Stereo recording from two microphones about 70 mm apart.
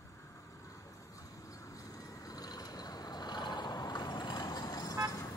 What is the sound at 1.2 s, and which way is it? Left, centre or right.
Vehicle, left.